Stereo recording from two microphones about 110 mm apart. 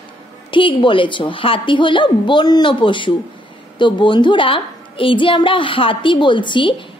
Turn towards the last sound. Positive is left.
turn(degrees=45)  # may be behind; listen again after turning